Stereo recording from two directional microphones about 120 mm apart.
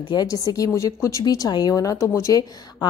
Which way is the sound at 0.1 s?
35° left (ahead or behind).